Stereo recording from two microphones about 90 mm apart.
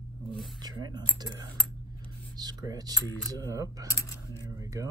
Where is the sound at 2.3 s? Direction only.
45° right (ahead or behind).